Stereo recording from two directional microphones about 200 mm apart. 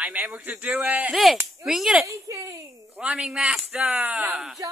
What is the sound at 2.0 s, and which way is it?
Speech, 15° right (ahead or behind).